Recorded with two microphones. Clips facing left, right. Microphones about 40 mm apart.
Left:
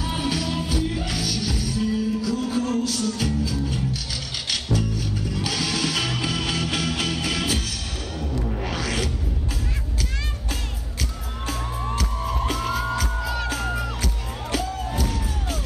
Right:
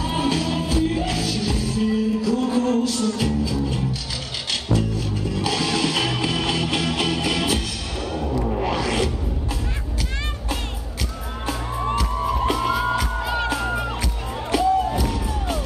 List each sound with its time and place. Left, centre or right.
0.1 s music: right
11.4 s music: right
13.2 s music: right
14.9 s music: right